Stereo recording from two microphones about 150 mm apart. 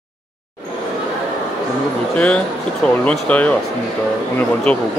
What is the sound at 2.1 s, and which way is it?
Speech, 10° left (ahead or behind).